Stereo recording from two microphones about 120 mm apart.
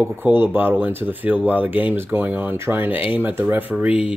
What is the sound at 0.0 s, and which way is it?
Speech, 15° right (ahead or behind).